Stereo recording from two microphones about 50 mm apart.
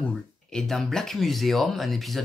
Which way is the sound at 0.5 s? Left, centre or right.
Centre.